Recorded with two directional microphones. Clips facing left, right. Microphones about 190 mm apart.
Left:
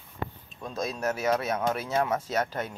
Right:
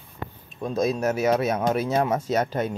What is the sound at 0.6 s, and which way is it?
Speech, 15° right (ahead or behind).